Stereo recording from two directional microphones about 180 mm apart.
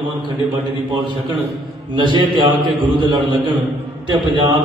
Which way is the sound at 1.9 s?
25° right (ahead or behind).